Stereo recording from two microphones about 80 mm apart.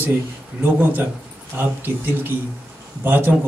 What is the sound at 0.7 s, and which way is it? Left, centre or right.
A man's voice, right.